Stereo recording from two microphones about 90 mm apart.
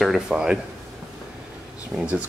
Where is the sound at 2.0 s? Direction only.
15° right (ahead or behind).